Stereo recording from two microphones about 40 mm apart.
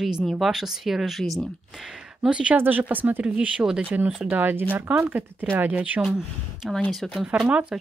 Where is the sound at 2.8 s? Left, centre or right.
Right.